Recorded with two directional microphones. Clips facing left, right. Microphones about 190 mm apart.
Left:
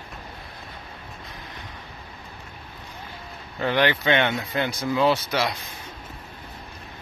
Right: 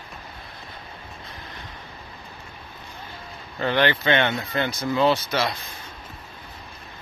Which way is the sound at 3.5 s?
10° left (ahead or behind).